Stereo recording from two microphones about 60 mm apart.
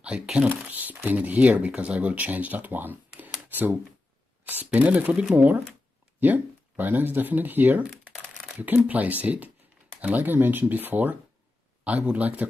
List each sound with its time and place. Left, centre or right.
0.0 s speech: centre
0.5 s speech: right
3.2 s a sound: right
4.7 s speech: right